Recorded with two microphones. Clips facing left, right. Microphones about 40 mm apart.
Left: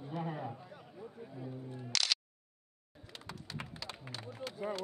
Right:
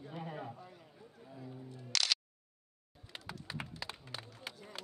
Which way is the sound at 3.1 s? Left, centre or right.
Centre.